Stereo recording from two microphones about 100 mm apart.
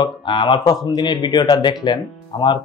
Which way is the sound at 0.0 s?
55° left (ahead or behind).